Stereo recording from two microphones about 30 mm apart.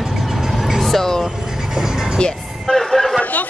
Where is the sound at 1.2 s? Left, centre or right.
Centre.